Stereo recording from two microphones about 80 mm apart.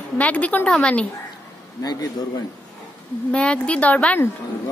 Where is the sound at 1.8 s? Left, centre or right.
Left.